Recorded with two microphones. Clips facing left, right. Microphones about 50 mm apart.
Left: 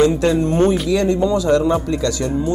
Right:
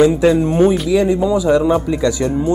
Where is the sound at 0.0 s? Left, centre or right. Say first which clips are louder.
Right 3 dB; centre.